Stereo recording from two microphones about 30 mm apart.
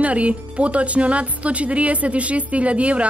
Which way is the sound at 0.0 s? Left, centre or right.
Right.